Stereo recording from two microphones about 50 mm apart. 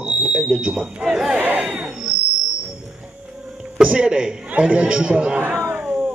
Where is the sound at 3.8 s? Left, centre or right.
Centre.